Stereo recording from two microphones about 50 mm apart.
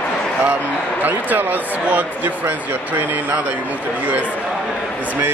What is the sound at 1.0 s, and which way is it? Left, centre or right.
Speech, right.